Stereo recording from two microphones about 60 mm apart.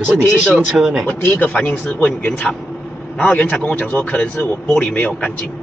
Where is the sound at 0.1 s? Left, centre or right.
Centre.